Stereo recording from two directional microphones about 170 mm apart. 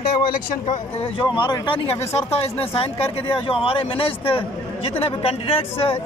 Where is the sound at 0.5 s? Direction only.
45° left (ahead or behind).